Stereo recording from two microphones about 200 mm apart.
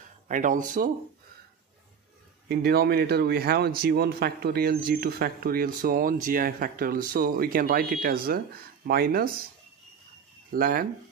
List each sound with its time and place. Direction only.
0.3 s speech: 40° right (ahead or behind)
2.4 s a man's voice: 50° right (ahead or behind)
10.5 s a man's voice: 45° right (ahead or behind)